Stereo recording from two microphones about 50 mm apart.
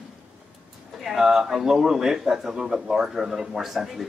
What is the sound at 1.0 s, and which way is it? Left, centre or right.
A man's voice, centre.